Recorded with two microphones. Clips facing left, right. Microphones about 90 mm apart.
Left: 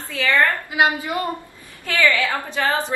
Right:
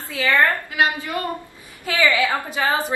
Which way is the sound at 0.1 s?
10° right (ahead or behind).